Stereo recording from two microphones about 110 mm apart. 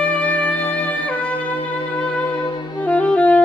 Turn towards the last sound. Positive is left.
turn(degrees=15)  # may be behind; listen again after turning